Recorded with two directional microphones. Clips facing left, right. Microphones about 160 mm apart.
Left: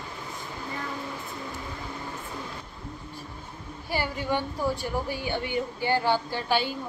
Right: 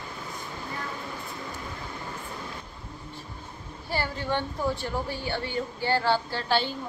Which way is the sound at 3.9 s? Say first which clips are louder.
Left 1 dB; 15° left (ahead or behind).